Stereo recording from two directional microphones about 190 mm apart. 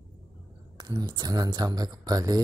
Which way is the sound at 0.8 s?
20° right (ahead or behind).